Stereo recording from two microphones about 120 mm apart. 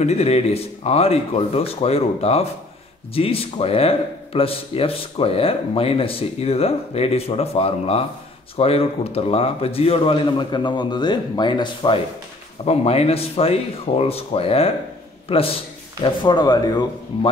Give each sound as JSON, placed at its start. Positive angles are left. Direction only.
{"t": 0.0, "sound": "a man's voice", "side_deg": 65}
{"t": 12.6, "sound": "speech", "side_deg": 60}
{"t": 16.0, "sound": "speech", "side_deg": 40}